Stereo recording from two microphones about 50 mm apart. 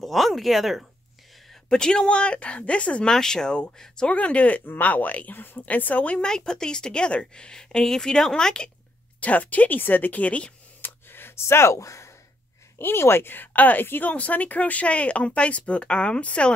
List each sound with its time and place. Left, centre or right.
0.0 s speech: centre
1.7 s speech: centre
3.1 s speech: centre
4.1 s speech: left
6.2 s speech: centre
9.2 s speech: left
10.8 s a sound: left
12.7 s speech: left